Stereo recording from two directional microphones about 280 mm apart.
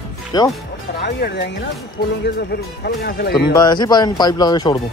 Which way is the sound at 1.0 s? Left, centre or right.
Left.